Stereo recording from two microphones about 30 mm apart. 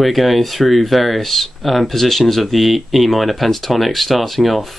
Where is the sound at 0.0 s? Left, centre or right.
Centre.